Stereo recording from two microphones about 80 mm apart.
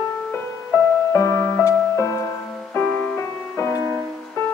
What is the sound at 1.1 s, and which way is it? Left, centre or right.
Music, left.